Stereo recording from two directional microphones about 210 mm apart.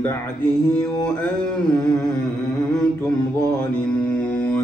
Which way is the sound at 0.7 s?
5° left (ahead or behind).